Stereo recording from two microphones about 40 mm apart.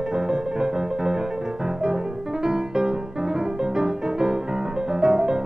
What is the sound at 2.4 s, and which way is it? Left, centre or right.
Music, centre.